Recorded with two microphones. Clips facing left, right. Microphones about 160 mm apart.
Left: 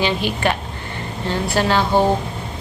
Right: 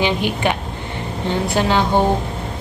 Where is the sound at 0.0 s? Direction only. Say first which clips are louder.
Right 1 dB; 15° right (ahead or behind).